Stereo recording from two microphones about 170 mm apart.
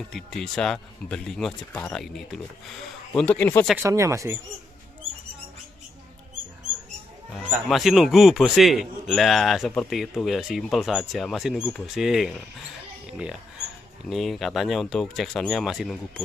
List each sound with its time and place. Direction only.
0.1 s speech: 5° left (ahead or behind)
3.7 s speech: 15° right (ahead or behind)
7.3 s speech: centre (ahead or behind)
14.0 s speech: centre (ahead or behind)